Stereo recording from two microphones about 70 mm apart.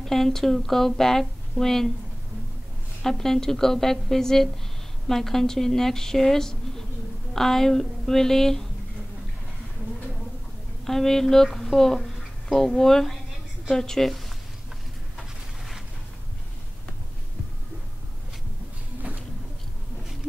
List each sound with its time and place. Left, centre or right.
0.0 s speech: centre
3.0 s a woman's voice: centre
10.9 s speech: centre